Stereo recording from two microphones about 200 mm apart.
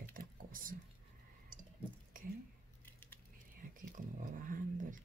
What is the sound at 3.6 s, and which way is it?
Speech, 40° right (ahead or behind).